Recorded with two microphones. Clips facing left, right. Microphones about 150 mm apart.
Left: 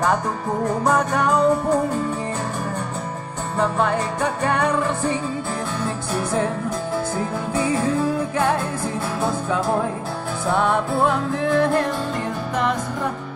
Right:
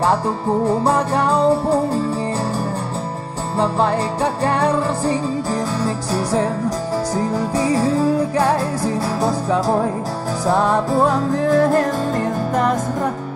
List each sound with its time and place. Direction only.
0.7 s music: 30° right (ahead or behind)
3.5 s music: 30° right (ahead or behind)